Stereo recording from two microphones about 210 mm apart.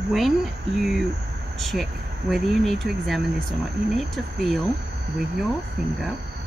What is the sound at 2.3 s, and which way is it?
Speech, centre (ahead or behind).